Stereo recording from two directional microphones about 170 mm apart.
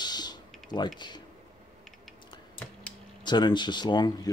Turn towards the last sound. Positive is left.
turn(degrees=25)  # may be behind; listen again after turning